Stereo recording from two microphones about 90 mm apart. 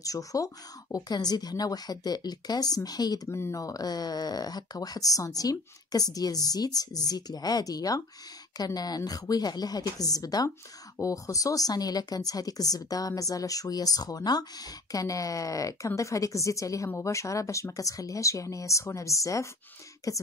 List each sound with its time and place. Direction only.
0.0 s speech: 40° left (ahead or behind)
3.3 s speech: 30° left (ahead or behind)